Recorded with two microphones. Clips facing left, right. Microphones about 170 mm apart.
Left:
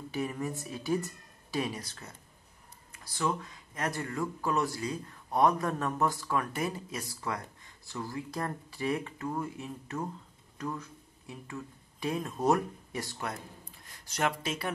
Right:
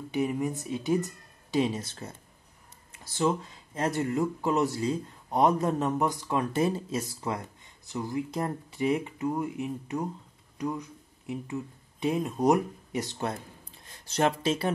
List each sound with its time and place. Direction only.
0.1 s speech: 20° right (ahead or behind)